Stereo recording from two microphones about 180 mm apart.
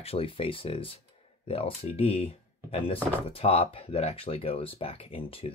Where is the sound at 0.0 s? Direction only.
30° left (ahead or behind).